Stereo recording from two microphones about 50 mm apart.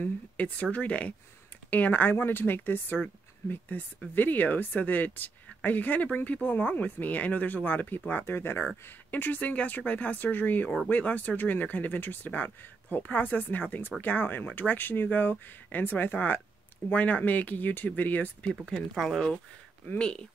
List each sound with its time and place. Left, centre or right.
0.0 s speech: left
8.1 s speech: left
18.9 s speech: centre
20.0 s speech: left